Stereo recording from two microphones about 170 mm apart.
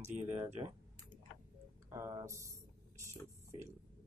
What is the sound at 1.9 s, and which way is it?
Speech, 20° right (ahead or behind).